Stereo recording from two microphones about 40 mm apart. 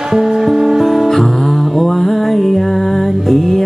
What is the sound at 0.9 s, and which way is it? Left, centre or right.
Music, centre.